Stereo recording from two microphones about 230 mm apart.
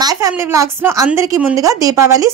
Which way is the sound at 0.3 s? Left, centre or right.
Centre.